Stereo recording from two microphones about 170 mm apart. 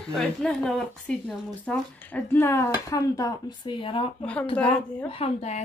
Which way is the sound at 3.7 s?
30° left (ahead or behind).